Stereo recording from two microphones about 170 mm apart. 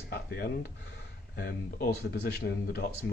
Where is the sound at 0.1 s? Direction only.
70° left (ahead or behind).